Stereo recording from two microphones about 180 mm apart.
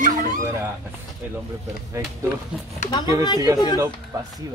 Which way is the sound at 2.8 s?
25° left (ahead or behind).